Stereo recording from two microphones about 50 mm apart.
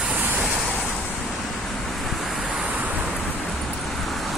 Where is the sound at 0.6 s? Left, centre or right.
Centre.